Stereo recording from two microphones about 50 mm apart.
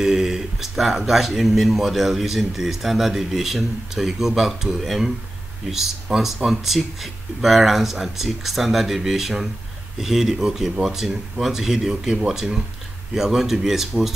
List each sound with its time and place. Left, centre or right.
0.0 s speech: centre